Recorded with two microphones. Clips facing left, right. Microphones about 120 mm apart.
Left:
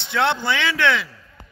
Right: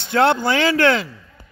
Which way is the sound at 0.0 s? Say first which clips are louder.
Right 5 dB; 45° right (ahead or behind).